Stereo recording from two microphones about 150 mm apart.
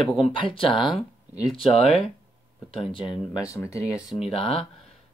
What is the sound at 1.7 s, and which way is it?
Speech, 40° left (ahead or behind).